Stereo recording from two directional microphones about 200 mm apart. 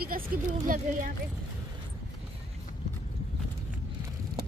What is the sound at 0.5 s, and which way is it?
Speech, 40° right (ahead or behind).